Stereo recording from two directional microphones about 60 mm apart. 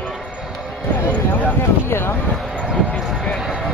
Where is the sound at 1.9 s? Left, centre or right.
Left.